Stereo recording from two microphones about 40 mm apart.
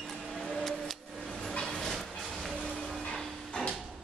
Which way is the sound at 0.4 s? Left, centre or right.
Centre.